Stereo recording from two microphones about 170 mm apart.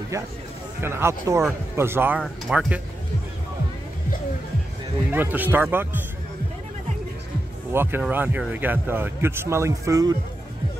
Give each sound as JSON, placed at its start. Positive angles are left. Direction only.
{"t": 0.1, "sound": "speech", "side_deg": -20}
{"t": 5.1, "sound": "speech", "side_deg": -10}
{"t": 7.7, "sound": "speech", "side_deg": -15}